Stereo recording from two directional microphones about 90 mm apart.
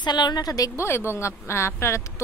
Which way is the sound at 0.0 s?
55° left (ahead or behind).